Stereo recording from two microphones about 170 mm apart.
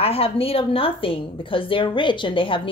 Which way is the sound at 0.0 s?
35° left (ahead or behind).